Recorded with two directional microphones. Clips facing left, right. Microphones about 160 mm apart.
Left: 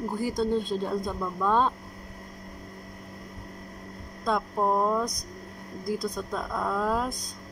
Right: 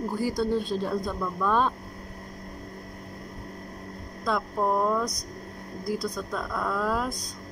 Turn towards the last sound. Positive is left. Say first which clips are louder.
# even
turn(degrees=20)  # may be behind; listen again after turning